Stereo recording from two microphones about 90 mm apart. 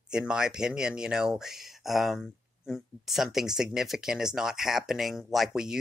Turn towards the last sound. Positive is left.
turn(degrees=-5)  # may be behind; listen again after turning